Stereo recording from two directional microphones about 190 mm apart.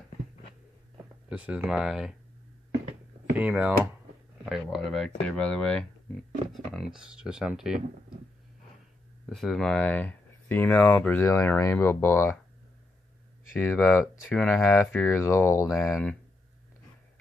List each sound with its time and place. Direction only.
1.3 s speech: 5° right (ahead or behind)
3.3 s speech: 10° right (ahead or behind)
9.2 s speech: centre (ahead or behind)
13.6 s speech: 15° left (ahead or behind)